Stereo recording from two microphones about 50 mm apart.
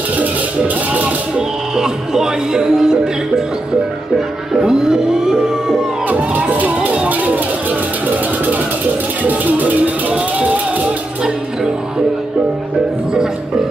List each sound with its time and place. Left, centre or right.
1.3 s music: centre
4.6 s music: centre
6.0 s music: right
9.2 s music: right